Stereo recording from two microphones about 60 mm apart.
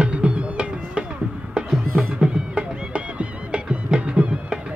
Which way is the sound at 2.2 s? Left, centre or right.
Centre.